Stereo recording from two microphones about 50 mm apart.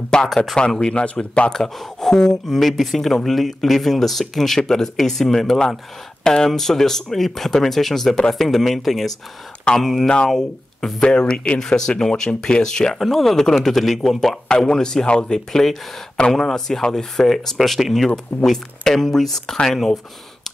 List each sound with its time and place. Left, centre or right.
0.1 s speech: centre; by 1.5 s left
1.5 s speech: centre
11.0 s speech: centre